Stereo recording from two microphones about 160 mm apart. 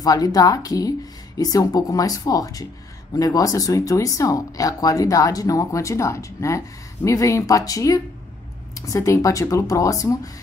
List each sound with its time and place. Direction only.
0.0 s speech: 25° left (ahead or behind)